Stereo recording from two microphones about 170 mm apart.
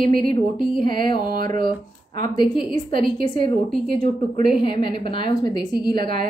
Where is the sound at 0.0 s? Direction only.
55° right (ahead or behind).